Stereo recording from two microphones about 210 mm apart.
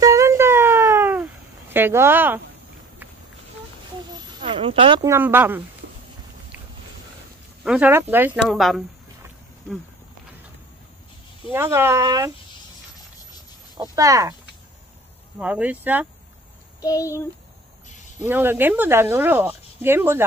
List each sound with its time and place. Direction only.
0.0 s a sound: 15° right (ahead or behind)
4.1 s a sound: 25° right (ahead or behind)
5.0 s speech: 10° right (ahead or behind)
7.6 s speech: 5° right (ahead or behind)
11.4 s speech: 10° right (ahead or behind)
13.7 s speech: 15° right (ahead or behind)
15.3 s speech: 5° right (ahead or behind)
16.8 s a child's voice: 15° left (ahead or behind)
18.2 s speech: 10° right (ahead or behind)